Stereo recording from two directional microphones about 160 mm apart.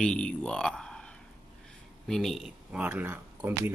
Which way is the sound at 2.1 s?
Centre (ahead or behind).